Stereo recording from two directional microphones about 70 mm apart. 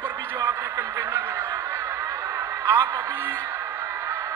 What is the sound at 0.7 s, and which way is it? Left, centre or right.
Snicker, right.